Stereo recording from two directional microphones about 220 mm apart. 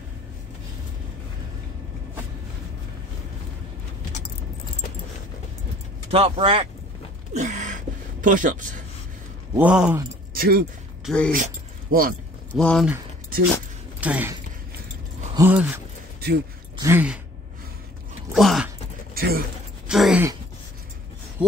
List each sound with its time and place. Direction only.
6.0 s speech: 25° right (ahead or behind)
7.3 s a sound: 35° right (ahead or behind)
9.6 s speech: 5° right (ahead or behind)
10.3 s speech: 40° right (ahead or behind)
11.1 s speech: 5° left (ahead or behind)
11.3 s dog: 40° right (ahead or behind)
12.5 s speech: 5° left (ahead or behind)
14.0 s speech: 5° right (ahead or behind)
15.3 s speech: 10° right (ahead or behind)
16.7 s a sound: 10° right (ahead or behind)
18.3 s a sound: centre (ahead or behind)
19.1 s speech: 40° right (ahead or behind)
19.9 s a sound: 5° right (ahead or behind)